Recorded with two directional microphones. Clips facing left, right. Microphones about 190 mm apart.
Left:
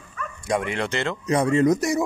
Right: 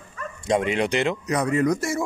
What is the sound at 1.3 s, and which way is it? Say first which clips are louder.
Speech: left 5 dB; 30° left (ahead or behind).